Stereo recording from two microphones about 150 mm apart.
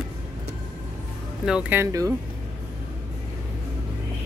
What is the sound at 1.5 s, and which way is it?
Speech, 10° right (ahead or behind).